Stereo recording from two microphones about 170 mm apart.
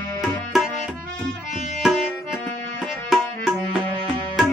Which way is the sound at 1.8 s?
5° right (ahead or behind).